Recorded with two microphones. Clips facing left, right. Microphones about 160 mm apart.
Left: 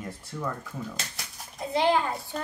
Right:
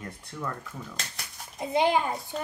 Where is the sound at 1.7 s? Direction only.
15° right (ahead or behind).